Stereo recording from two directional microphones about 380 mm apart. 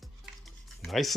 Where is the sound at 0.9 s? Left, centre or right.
Centre.